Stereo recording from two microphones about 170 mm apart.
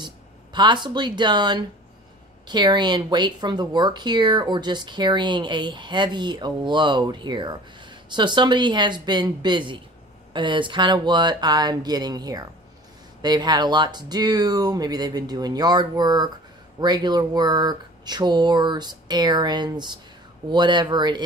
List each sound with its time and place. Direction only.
0.0 s speech: 25° right (ahead or behind)